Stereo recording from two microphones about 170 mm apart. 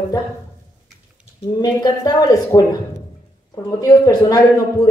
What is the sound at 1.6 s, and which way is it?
A woman's voice, 25° left (ahead or behind).